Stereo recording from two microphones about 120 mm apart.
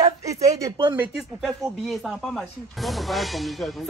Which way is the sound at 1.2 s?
Centre (ahead or behind).